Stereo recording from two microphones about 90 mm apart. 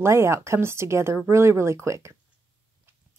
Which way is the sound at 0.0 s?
30° right (ahead or behind).